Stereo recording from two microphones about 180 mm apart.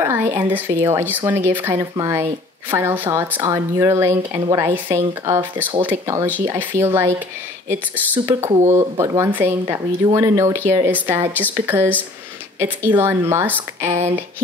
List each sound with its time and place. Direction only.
0.0 s a woman's voice: 15° right (ahead or behind)